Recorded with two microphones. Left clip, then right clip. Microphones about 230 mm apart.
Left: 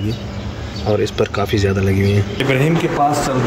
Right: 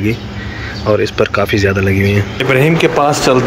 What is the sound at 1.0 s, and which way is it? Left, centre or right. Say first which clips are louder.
Speech: right 4 dB; centre.